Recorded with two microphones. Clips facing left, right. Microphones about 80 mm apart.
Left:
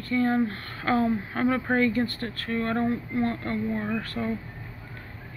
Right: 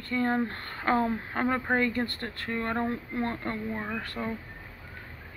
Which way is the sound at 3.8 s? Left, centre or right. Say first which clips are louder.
Left 4 dB; centre.